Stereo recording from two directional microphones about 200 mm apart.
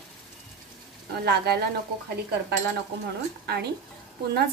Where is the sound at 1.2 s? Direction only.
55° right (ahead or behind).